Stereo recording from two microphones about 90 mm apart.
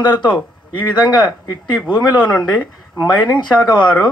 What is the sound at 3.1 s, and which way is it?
Speech, 55° left (ahead or behind).